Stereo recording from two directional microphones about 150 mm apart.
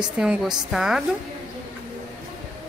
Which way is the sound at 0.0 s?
5° right (ahead or behind).